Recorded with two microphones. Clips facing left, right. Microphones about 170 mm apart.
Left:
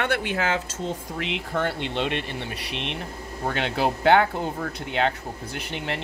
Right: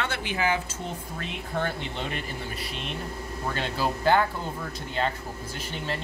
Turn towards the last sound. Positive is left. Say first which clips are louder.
# left 2 dB
turn(degrees=70)  # may be behind; listen again after turning